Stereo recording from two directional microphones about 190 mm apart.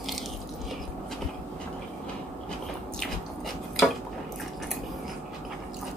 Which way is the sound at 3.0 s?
Centre (ahead or behind).